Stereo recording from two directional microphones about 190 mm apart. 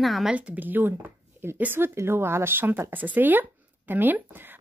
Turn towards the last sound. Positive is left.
turn(degrees=-10)  # may be behind; listen again after turning